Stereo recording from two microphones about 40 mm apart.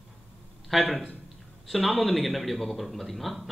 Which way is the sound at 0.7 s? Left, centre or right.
Centre.